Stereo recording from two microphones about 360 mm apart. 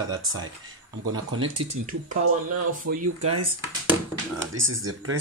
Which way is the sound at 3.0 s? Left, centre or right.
Right.